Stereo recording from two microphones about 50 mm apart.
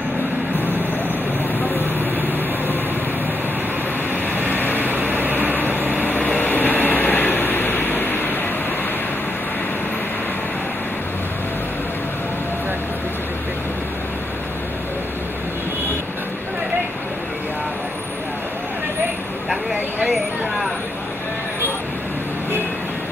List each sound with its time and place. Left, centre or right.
4.5 s vehicle: left
4.7 s vehicle: right
6.0 s train: left
20.1 s a sound: centre